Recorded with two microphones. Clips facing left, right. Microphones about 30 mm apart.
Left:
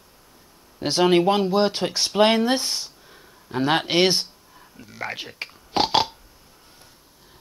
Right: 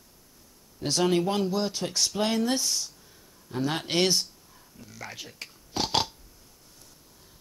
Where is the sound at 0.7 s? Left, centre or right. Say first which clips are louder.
Left 6 dB; left.